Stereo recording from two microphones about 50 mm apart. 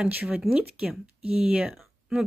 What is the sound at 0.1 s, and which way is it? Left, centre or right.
Speech, right.